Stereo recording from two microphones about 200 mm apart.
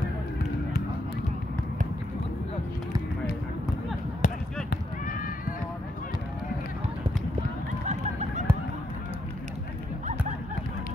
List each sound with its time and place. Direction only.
4.2 s basketball bounce: 40° left (ahead or behind)
4.6 s cat: 45° left (ahead or behind)
7.8 s honk: 35° right (ahead or behind)